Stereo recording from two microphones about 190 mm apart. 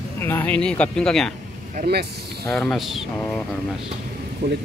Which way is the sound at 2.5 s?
5° left (ahead or behind).